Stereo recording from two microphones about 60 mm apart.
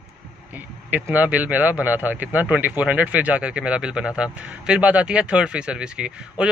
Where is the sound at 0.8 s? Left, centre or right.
Right.